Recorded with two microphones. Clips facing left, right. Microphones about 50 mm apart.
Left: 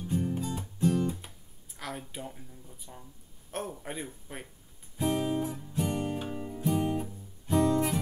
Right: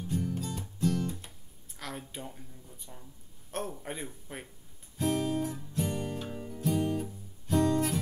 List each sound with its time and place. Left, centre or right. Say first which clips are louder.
0.0 s guitar: left 2 dB; centre
3.5 s speech: even; centre
4.9 s music: left 1 dB; centre